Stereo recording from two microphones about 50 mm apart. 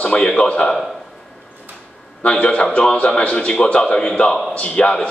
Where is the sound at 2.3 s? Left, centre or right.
Centre.